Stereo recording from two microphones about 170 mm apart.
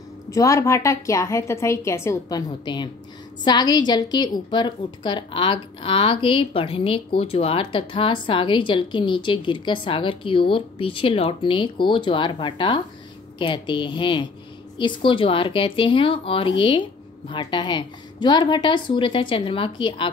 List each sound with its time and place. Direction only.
0.3 s a woman's voice: 20° left (ahead or behind)